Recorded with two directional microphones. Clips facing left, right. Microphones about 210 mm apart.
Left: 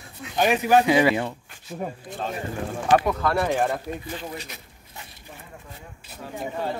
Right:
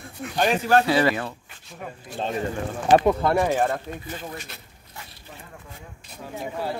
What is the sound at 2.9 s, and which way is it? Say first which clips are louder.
Speech: right 3 dB; 25° right (ahead or behind).